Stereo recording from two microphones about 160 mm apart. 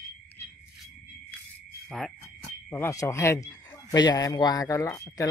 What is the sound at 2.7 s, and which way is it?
Speech, 15° left (ahead or behind).